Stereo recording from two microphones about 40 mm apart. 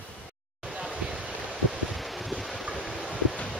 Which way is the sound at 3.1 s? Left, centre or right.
Left.